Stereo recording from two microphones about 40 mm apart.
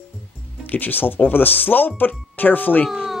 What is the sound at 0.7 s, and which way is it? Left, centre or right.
Speech, left.